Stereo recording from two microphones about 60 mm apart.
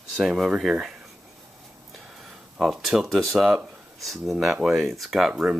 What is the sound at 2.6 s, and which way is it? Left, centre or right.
Speech, centre.